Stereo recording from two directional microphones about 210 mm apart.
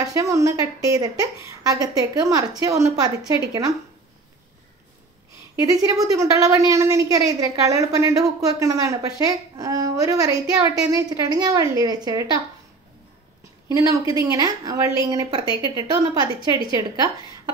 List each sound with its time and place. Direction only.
0.0 s a woman's voice: 15° right (ahead or behind)
5.6 s a woman's voice: 15° right (ahead or behind)
13.7 s a woman's voice: 15° right (ahead or behind)